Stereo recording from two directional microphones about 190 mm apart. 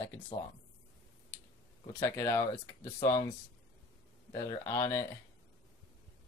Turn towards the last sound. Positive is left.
turn(degrees=15)  # may be behind; listen again after turning